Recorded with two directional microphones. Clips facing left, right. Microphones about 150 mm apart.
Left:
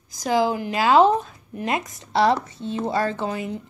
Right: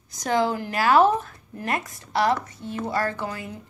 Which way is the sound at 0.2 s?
10° left (ahead or behind).